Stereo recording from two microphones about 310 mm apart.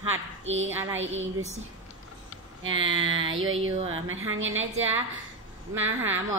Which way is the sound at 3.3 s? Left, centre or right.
Right.